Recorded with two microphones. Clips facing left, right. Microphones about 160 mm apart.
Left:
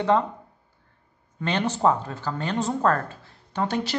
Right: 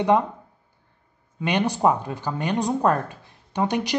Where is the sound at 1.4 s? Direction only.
15° right (ahead or behind).